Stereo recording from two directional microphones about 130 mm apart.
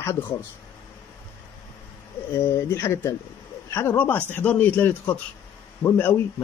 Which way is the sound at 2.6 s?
20° left (ahead or behind).